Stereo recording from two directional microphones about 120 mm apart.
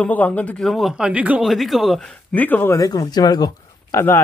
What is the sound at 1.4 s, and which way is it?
Speech, centre (ahead or behind).